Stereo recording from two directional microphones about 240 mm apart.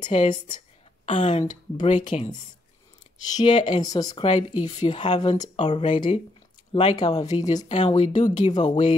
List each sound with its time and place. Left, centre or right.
0.0 s speech: left
3.3 s speech: centre